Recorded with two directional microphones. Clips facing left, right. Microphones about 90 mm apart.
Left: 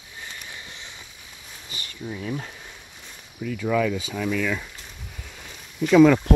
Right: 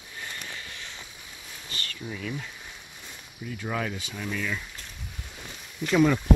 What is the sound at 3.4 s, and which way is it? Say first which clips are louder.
Speech: left 7 dB; 90° left.